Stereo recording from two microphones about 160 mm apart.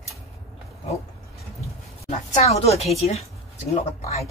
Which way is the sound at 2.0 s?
40° left (ahead or behind).